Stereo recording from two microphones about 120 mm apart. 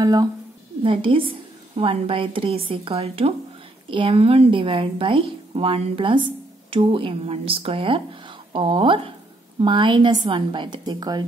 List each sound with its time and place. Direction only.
0.0 s a woman's voice: 30° right (ahead or behind)
0.8 s a woman's voice: 45° right (ahead or behind)